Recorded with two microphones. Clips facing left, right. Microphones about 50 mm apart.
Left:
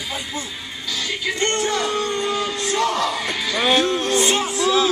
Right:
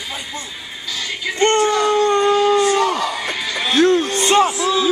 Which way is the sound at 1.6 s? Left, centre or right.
Centre.